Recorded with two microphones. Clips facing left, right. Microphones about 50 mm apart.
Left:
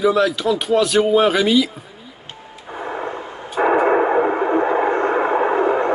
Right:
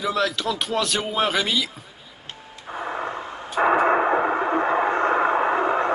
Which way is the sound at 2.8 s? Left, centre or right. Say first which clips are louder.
Left 3 dB; centre.